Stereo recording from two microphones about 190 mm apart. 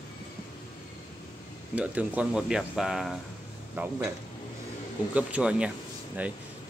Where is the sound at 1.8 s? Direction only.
5° right (ahead or behind).